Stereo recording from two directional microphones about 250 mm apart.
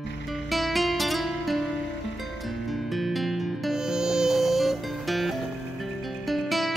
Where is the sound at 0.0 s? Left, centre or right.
Left.